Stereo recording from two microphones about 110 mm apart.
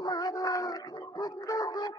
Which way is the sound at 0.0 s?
40° left (ahead or behind).